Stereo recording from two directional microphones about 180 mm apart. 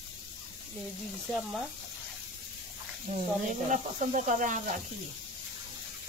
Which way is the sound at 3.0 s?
45° right (ahead or behind).